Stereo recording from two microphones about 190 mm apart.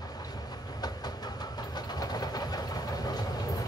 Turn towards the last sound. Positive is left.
turn(degrees=20)  # may be behind; listen again after turning